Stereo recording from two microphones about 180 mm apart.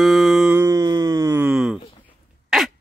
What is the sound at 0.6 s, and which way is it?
Wail, 15° right (ahead or behind).